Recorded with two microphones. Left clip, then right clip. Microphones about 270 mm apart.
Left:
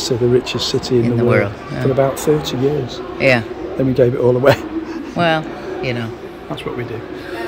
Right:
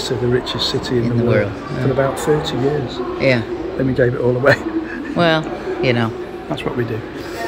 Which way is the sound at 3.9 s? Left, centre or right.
Left.